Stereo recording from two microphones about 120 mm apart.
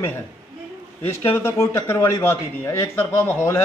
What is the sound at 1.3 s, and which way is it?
A man's voice, 20° left (ahead or behind).